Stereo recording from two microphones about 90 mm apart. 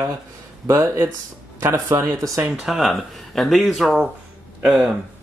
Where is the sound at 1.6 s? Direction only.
30° right (ahead or behind).